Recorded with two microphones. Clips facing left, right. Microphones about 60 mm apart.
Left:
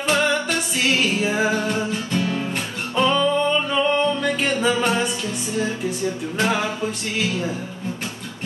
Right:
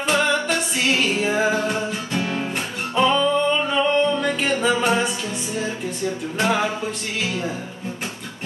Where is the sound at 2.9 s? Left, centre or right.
Centre.